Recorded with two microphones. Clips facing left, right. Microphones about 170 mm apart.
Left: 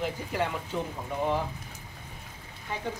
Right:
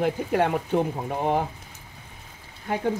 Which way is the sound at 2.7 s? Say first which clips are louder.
Right 8 dB; 55° right (ahead or behind).